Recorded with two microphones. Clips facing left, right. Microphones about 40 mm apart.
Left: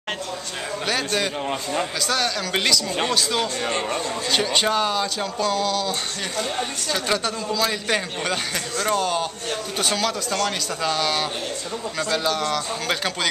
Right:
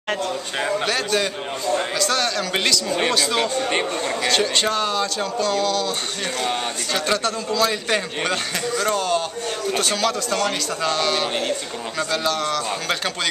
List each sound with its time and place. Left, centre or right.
0.8 s a man's voice: centre
4.3 s a man's voice: centre
7.1 s a man's voice: centre